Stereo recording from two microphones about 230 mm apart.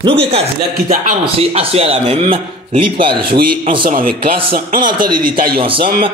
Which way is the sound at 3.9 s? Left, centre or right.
Right.